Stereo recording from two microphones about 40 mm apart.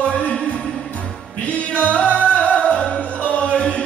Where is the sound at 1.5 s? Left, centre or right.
Left.